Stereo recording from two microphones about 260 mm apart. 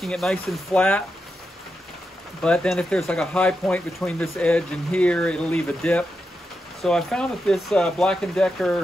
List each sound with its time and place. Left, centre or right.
0.0 s speech: centre
2.4 s speech: centre